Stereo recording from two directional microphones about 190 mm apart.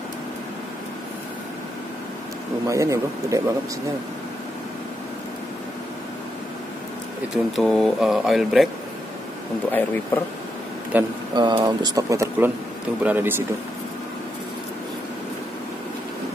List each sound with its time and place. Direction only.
2.7 s speech: 15° right (ahead or behind)
7.5 s speech: centre (ahead or behind)
9.7 s speech: 10° left (ahead or behind)
10.9 s speech: 10° right (ahead or behind)
11.3 s speech: 20° right (ahead or behind)